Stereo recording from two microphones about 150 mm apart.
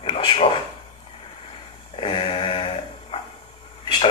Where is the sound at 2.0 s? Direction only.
35° left (ahead or behind).